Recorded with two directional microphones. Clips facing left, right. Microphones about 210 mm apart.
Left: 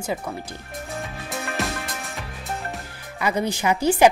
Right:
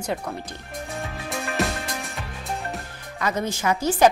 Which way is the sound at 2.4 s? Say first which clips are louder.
Right 1 dB; 5° left (ahead or behind).